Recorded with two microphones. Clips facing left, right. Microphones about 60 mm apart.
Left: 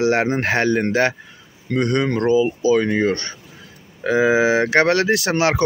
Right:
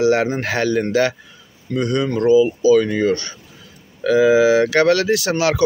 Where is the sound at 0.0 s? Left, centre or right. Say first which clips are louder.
Right 1 dB; left.